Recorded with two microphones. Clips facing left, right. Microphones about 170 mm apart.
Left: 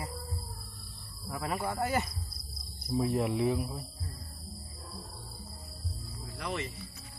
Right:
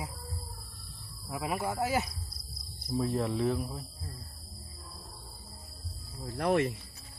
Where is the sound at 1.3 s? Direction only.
10° right (ahead or behind).